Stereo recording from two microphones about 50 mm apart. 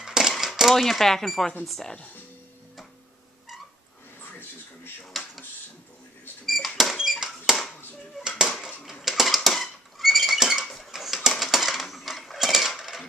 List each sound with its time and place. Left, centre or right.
0.0 s a sound: centre
0.7 s speech: centre
5.1 s a sound: centre
6.4 s cash register: centre
7.5 s clapping: centre
8.2 s a sound: centre
9.0 s rodents: centre
10.6 s cutlery: centre
10.9 s coin: centre